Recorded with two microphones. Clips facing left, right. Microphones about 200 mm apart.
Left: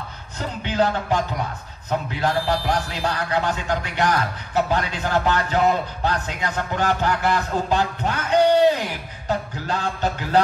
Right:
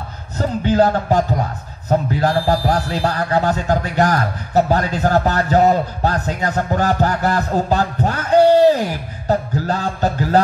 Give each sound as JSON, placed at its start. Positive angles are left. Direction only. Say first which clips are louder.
{"t": 0.4, "sound": "speech", "louder": "right 7 dB", "side_deg": -40}